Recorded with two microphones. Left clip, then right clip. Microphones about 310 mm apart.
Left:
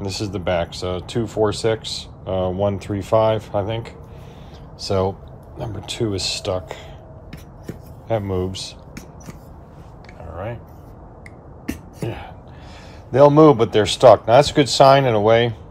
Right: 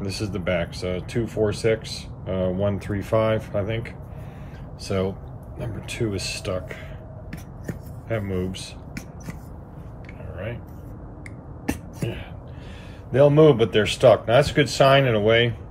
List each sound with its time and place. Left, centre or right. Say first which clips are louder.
0.0 s speech: left 3 dB; centre
8.1 s speech: left 5 dB; centre
11.6 s whispering: even; centre
13.1 s speech: left 4 dB; centre